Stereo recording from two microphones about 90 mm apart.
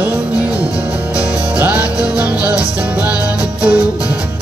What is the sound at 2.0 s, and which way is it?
Music, 15° right (ahead or behind).